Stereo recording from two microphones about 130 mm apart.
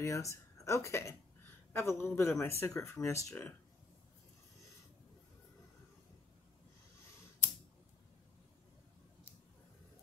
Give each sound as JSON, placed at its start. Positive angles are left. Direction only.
{"t": 0.0, "sound": "a man's voice", "side_deg": 25}